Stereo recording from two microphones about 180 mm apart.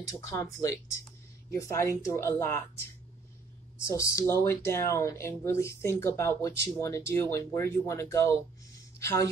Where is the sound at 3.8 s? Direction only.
15° left (ahead or behind).